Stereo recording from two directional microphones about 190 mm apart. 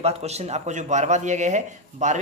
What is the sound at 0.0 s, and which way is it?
Speech, 35° right (ahead or behind).